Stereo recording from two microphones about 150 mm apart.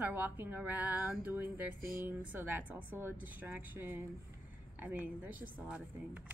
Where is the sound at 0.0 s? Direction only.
15° right (ahead or behind).